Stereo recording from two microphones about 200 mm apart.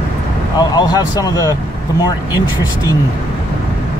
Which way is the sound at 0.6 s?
20° left (ahead or behind).